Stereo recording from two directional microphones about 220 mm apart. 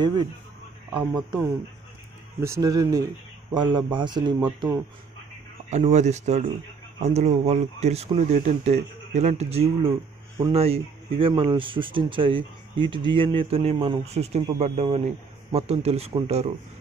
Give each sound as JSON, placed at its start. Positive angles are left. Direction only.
{"t": 0.0, "sound": "speech", "side_deg": -20}
{"t": 2.4, "sound": "speech", "side_deg": -15}
{"t": 5.7, "sound": "speech", "side_deg": -30}